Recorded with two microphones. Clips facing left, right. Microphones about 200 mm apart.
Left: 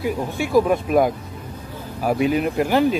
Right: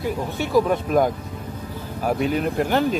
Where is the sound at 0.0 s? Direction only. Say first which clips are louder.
Left 2 dB; 10° left (ahead or behind).